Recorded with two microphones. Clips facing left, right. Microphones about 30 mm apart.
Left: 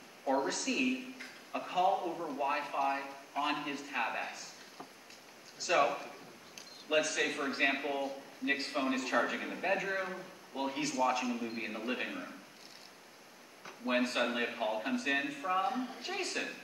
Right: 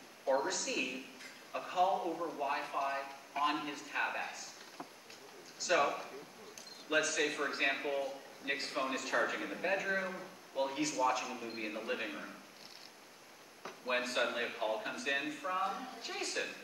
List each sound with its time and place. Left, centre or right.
0.3 s a man's voice: centre
5.6 s a man's voice: centre
13.7 s a man's voice: centre